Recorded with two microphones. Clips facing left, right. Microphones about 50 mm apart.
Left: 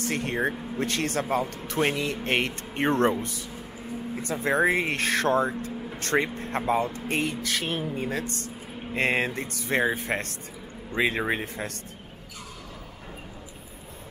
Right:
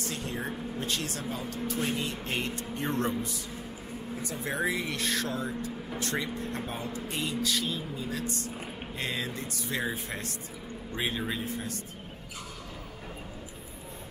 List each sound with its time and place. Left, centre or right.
0.0 s speech: left
11.0 s speech: left